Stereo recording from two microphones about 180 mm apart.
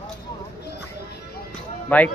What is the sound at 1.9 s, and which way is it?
Speech, 10° left (ahead or behind).